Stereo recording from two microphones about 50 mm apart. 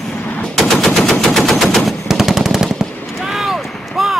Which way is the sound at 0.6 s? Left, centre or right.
Centre.